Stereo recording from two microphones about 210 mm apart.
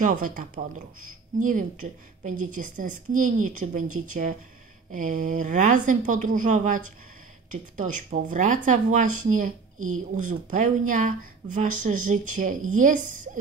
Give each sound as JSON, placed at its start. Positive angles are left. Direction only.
{"t": 0.0, "sound": "speech", "side_deg": -40}